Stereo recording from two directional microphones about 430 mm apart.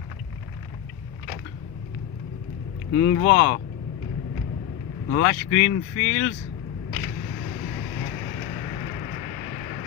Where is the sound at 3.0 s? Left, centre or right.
Left.